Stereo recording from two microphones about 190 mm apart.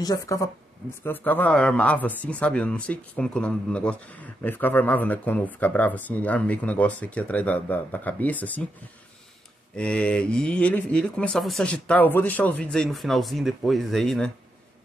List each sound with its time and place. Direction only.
0.0 s a woman's voice: 20° left (ahead or behind)
9.8 s speech: 5° left (ahead or behind)